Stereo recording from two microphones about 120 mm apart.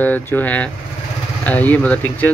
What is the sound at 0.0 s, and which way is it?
Speech, 15° left (ahead or behind).